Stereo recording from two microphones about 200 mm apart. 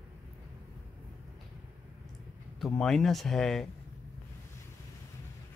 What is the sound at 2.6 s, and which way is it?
Speech, centre (ahead or behind).